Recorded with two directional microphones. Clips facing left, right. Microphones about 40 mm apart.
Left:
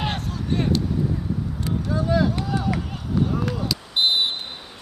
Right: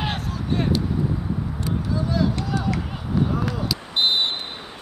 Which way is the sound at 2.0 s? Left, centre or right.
Left.